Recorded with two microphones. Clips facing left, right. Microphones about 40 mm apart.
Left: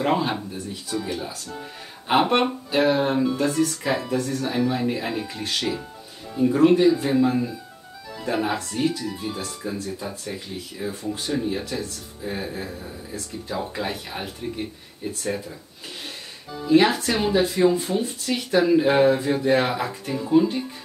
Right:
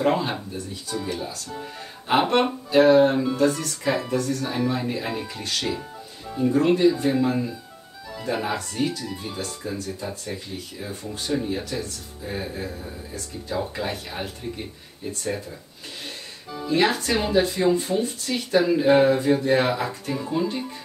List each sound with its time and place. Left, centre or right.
0.0 s speech: centre
4.2 s speech: centre
4.6 s speech: centre
5.1 s speech: centre
5.4 s speech: centre
16.6 s speech: centre